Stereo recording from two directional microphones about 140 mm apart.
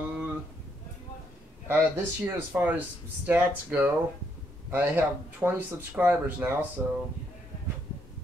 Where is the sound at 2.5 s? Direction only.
15° right (ahead or behind).